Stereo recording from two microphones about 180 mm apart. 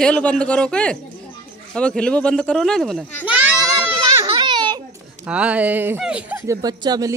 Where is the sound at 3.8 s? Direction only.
15° right (ahead or behind).